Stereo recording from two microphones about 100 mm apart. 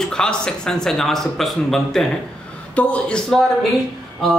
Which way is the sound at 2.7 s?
15° left (ahead or behind).